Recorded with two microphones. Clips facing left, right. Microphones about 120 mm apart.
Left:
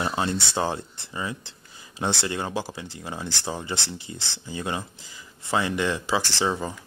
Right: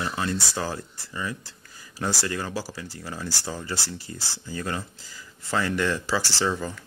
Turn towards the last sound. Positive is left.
turn(degrees=20)  # may be behind; listen again after turning